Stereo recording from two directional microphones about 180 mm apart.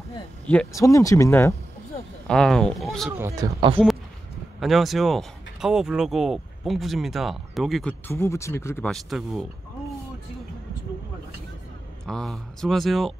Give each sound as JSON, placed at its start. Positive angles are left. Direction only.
{"t": 0.7, "sound": "speech", "side_deg": 15}
{"t": 2.2, "sound": "speech", "side_deg": 5}
{"t": 3.2, "sound": "speech", "side_deg": -15}
{"t": 4.6, "sound": "speech", "side_deg": 0}
{"t": 8.1, "sound": "speech", "side_deg": 15}
{"t": 8.9, "sound": "speech", "side_deg": 0}
{"t": 12.1, "sound": "speech", "side_deg": 5}